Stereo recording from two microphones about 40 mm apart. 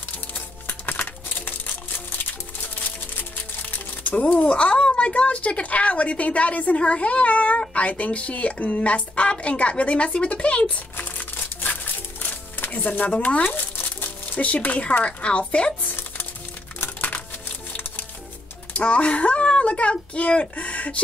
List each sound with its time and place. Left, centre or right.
0.8 s crumpling: left
4.0 s a woman's voice: left
11.1 s music: left
13.6 s crumpling: left
15.0 s speech: left
18.9 s speech: left